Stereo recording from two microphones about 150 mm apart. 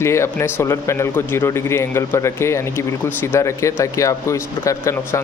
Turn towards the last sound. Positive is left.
turn(degrees=20)  # may be behind; listen again after turning